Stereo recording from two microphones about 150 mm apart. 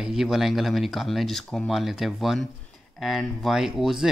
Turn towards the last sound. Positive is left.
turn(degrees=-5)  # may be behind; listen again after turning